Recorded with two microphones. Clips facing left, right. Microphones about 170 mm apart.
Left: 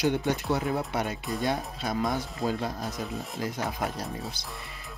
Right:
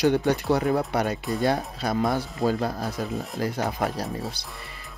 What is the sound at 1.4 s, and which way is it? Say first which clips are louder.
Speech: right 5 dB; 65° right (ahead or behind).